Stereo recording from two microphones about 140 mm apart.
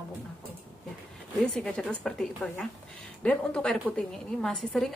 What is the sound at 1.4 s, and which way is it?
A woman's voice, 5° left (ahead or behind).